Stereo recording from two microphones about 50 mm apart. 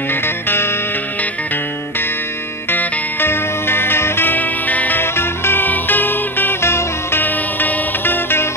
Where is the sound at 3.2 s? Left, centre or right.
Left.